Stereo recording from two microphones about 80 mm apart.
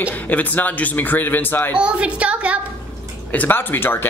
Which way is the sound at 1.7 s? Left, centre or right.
Centre.